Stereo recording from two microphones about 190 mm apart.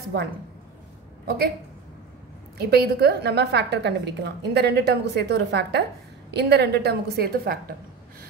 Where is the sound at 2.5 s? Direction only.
55° right (ahead or behind).